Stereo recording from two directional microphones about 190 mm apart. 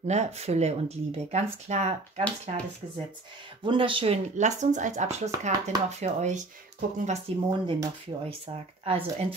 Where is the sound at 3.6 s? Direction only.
25° right (ahead or behind).